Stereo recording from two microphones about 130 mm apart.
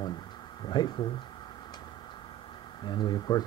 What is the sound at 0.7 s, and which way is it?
Speech, 40° left (ahead or behind).